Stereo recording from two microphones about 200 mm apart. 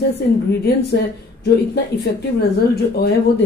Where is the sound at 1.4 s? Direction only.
55° left (ahead or behind).